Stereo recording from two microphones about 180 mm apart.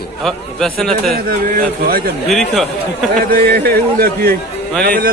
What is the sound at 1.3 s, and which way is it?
Speech, 55° right (ahead or behind).